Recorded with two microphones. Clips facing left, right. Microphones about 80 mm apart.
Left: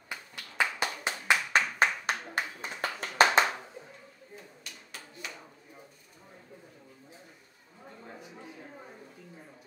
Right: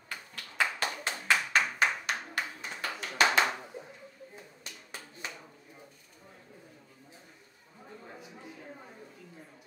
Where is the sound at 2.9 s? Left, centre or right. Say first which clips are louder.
Left 3 dB; left.